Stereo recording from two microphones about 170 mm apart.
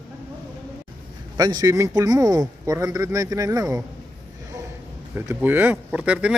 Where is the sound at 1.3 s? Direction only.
20° right (ahead or behind).